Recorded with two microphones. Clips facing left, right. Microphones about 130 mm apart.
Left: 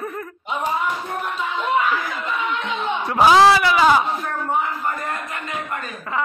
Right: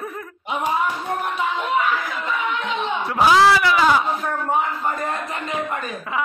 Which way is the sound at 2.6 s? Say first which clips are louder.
Even; centre (ahead or behind).